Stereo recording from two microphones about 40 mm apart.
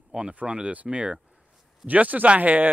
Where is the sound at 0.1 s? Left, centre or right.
Right.